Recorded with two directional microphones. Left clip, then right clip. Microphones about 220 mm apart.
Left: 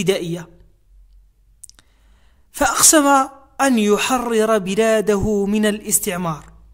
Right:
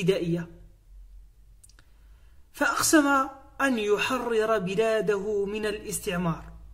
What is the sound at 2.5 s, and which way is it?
Speech, 45° left (ahead or behind).